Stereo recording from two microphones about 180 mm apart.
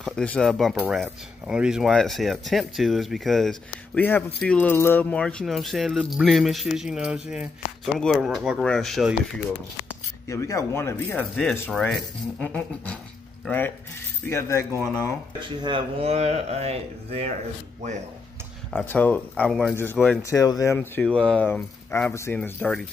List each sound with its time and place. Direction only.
0.0 s speech: 5° left (ahead or behind)
10.2 s speech: 15° left (ahead or behind)
15.6 s speech: 30° right (ahead or behind)
18.7 s speech: 5° left (ahead or behind)